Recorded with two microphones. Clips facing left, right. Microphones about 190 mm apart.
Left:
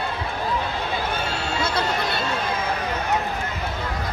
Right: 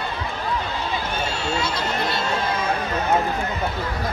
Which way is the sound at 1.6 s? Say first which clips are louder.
Left 1 dB; 55° left (ahead or behind).